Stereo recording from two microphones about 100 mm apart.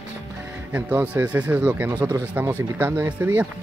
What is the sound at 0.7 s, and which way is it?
Speech, 15° right (ahead or behind).